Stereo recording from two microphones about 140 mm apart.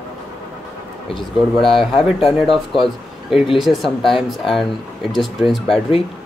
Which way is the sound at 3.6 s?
Centre (ahead or behind).